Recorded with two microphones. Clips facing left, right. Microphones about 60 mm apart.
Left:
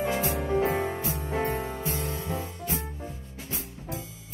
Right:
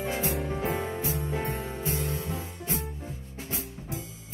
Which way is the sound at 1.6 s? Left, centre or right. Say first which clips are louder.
Left 2 dB; left.